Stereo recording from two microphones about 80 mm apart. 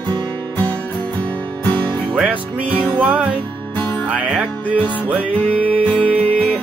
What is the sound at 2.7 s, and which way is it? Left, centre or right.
Music, left.